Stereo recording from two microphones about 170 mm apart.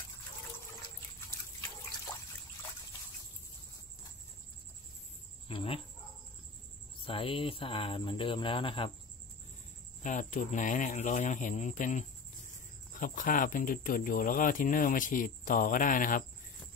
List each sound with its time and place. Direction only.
5.5 s speech: 30° left (ahead or behind)
7.1 s speech: 30° left (ahead or behind)
10.0 s speech: 50° left (ahead or behind)